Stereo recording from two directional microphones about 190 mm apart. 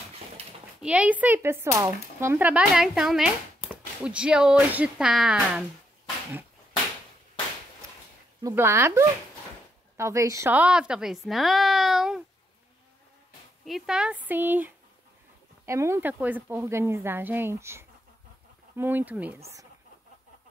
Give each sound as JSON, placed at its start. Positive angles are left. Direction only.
{"t": 0.8, "sound": "a woman's voice", "side_deg": -5}
{"t": 8.4, "sound": "a woman's voice", "side_deg": -15}
{"t": 13.7, "sound": "speech", "side_deg": 0}